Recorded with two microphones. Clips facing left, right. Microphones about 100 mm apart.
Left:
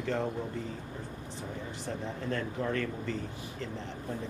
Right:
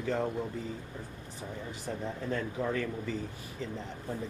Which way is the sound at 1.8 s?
5° right (ahead or behind).